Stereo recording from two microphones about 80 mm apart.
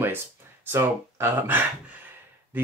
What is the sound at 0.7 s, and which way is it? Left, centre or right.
Speech, right.